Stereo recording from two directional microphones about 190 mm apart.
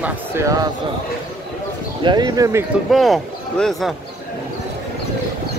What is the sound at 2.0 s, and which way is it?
Speech, 20° right (ahead or behind).